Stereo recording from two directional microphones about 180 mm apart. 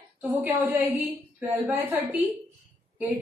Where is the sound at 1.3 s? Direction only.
10° right (ahead or behind).